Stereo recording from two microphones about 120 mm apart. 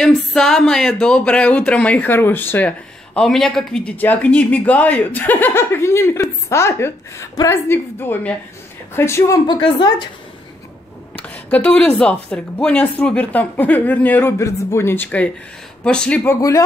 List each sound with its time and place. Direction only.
0.0 s speech: 5° left (ahead or behind)
3.2 s a man's voice: 5° left (ahead or behind)
3.9 s speech: 15° left (ahead or behind)
9.5 s a woman's voice: 40° left (ahead or behind)
11.1 s speech: 10° left (ahead or behind)
14.4 s speech: 25° left (ahead or behind); by 16.2 s 5° left (ahead or behind)
16.3 s speech: 25° left (ahead or behind)